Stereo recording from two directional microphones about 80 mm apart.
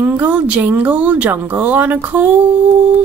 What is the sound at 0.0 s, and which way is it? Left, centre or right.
A woman's voice, right.